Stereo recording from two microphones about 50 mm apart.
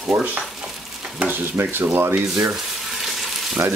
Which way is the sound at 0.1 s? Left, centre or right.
Right.